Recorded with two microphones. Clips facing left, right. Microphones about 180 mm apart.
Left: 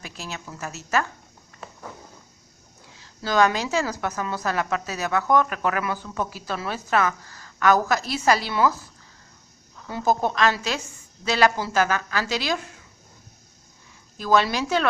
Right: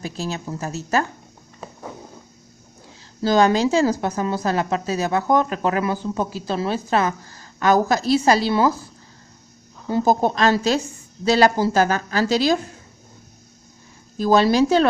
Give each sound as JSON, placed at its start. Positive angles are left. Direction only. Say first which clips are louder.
{"t": 0.0, "sound": "a woman's voice", "louder": "right 9 dB", "side_deg": -35}
{"t": 1.6, "sound": "a sound", "louder": "right 4 dB", "side_deg": -20}
{"t": 3.2, "sound": "speech", "louder": "right 5 dB", "side_deg": -30}
{"t": 9.8, "sound": "a woman's voice", "louder": "right 5 dB", "side_deg": -35}
{"t": 14.1, "sound": "a woman's voice", "louder": "right 5 dB", "side_deg": -35}